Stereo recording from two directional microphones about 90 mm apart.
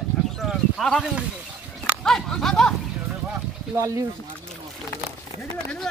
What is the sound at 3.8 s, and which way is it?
Speech, 35° right (ahead or behind).